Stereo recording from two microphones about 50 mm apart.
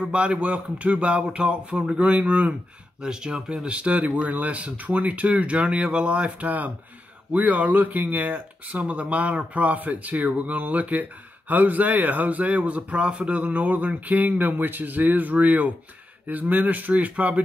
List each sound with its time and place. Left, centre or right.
0.0 s speech: right
3.0 s speech: centre; by 17.4 s right